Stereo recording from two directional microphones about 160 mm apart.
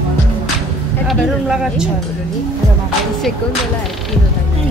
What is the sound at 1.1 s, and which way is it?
Speech, 5° right (ahead or behind).